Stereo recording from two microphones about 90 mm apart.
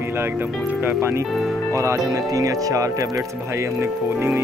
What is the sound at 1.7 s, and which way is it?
Speech, 35° right (ahead or behind).